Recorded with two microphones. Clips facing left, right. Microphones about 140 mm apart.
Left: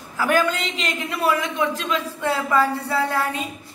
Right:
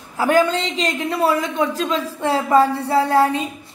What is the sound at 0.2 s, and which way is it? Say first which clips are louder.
A woman's voice: right 4 dB; 25° right (ahead or behind).